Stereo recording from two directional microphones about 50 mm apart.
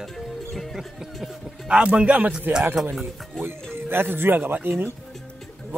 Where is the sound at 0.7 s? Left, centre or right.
Centre.